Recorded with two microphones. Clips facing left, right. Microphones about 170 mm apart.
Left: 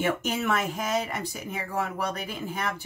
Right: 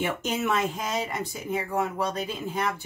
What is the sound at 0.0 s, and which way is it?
Speech, 20° right (ahead or behind).